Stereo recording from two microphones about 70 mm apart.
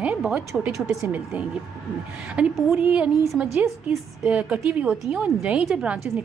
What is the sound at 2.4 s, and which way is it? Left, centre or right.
Speech, centre.